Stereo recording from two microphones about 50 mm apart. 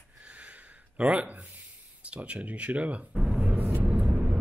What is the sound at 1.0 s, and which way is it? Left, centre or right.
Speech, right.